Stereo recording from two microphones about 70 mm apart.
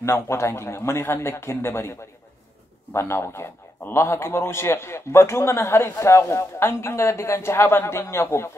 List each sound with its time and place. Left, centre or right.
0.0 s a man's voice: left